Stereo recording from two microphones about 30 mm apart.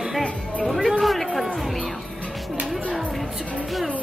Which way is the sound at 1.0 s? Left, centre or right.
Centre.